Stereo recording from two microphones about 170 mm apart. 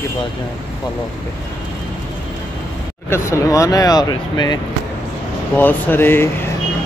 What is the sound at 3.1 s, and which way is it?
Speech, 15° left (ahead or behind).